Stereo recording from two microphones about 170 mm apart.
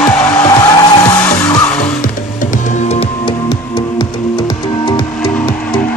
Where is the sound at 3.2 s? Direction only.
25° left (ahead or behind).